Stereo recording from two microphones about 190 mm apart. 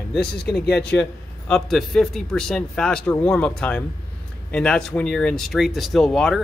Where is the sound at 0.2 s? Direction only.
55° left (ahead or behind).